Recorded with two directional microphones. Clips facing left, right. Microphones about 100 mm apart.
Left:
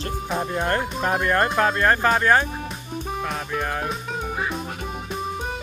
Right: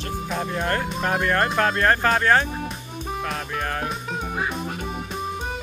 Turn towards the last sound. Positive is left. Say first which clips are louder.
# left 1 dB
turn(degrees=0)  # may be behind; listen again after turning